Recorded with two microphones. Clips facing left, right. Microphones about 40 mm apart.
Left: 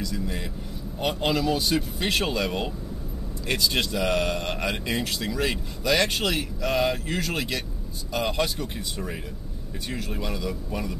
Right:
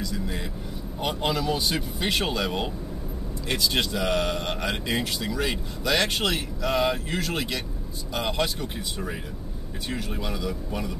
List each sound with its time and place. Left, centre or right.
0.0 s a man's voice: centre